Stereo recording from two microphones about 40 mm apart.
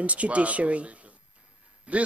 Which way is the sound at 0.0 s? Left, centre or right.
Right.